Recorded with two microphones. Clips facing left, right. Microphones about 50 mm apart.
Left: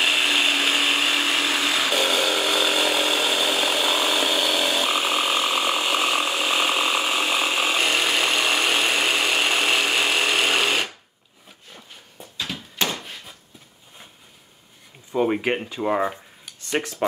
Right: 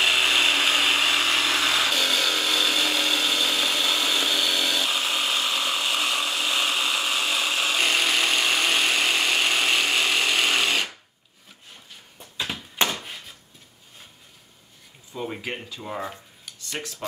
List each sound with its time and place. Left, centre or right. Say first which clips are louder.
0.0 s power tool: even; centre
12.4 s a sound: right 2 dB; right
15.1 s speech: left 10 dB; left